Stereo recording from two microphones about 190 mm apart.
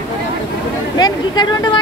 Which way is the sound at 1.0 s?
20° left (ahead or behind).